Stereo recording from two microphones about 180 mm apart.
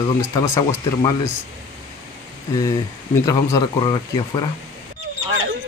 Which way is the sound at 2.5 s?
20° left (ahead or behind).